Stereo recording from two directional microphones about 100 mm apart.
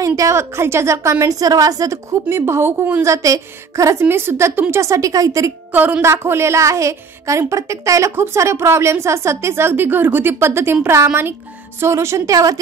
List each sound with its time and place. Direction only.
0.0 s a woman's voice: 35° right (ahead or behind)
5.7 s a woman's voice: 20° right (ahead or behind); by 12.5 s 35° right (ahead or behind)